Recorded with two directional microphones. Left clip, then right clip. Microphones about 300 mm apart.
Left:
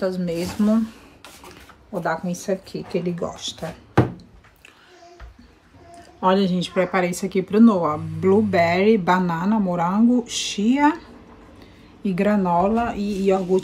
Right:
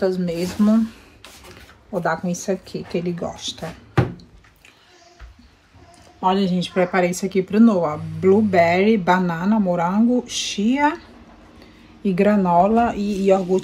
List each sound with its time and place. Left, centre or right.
0.0 s speech: centre
6.2 s speech: centre
12.0 s speech: centre